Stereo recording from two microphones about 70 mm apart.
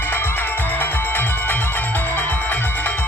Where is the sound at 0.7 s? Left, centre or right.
Left.